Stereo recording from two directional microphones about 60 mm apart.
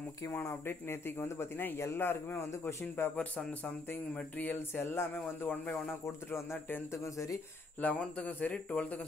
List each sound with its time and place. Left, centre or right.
0.7 s speech: left
3.2 s speech: centre
4.4 s speech: left
7.8 s speech: left